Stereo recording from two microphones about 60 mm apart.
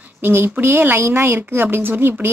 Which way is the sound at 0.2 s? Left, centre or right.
Right.